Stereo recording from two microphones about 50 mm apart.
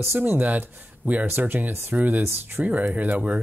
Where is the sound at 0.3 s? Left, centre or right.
Right.